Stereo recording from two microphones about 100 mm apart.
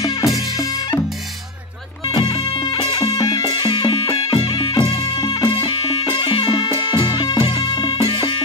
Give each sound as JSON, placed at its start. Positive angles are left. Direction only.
{"t": 0.2, "sound": "music", "side_deg": 40}
{"t": 2.0, "sound": "music", "side_deg": 50}
{"t": 2.7, "sound": "music", "side_deg": 60}
{"t": 3.1, "sound": "music", "side_deg": 45}
{"t": 3.9, "sound": "music", "side_deg": 45}
{"t": 5.7, "sound": "music", "side_deg": 60}